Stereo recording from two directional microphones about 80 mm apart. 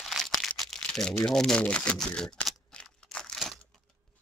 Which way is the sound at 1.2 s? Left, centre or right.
Centre.